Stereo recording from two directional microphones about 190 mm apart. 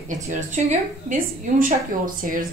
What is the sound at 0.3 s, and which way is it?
A woman's voice, 40° right (ahead or behind).